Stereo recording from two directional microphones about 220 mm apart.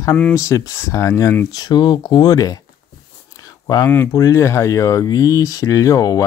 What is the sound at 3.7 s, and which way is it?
Speech, 10° left (ahead or behind).